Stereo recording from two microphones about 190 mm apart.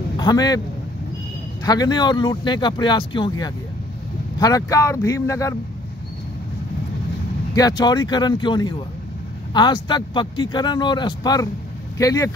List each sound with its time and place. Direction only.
0.2 s speech: 20° left (ahead or behind)
1.6 s speech: 20° left (ahead or behind)
7.5 s speech: 20° left (ahead or behind)